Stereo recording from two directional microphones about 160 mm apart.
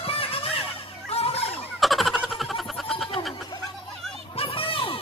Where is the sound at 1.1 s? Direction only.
40° left (ahead or behind).